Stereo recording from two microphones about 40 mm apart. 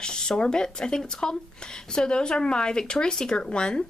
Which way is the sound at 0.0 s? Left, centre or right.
Centre.